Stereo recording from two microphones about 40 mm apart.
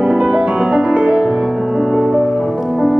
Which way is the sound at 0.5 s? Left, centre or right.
Right.